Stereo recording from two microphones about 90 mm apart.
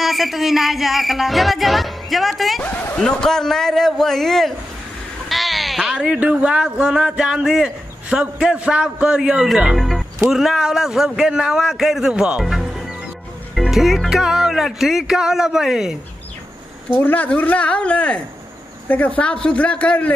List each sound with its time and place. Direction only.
0.0 s music: centre (ahead or behind)
2.6 s speech: 20° left (ahead or behind)
3.0 s music: 5° left (ahead or behind)
5.3 s speech: centre (ahead or behind)
10.3 s music: 5° right (ahead or behind)
16.9 s speech: 20° left (ahead or behind)